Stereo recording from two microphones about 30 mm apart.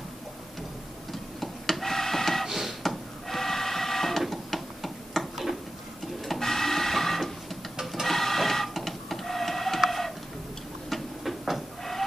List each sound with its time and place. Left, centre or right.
1.1 s printer: centre
2.4 s a sound: centre
2.8 s printer: centre
4.2 s a sound: centre
6.2 s printer: centre
9.8 s chicken: centre
10.9 s goat: centre